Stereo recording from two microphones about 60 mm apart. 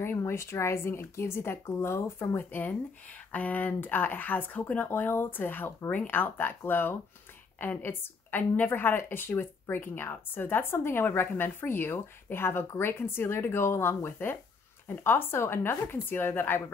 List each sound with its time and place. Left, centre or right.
0.2 s speech: left
2.3 s speech: left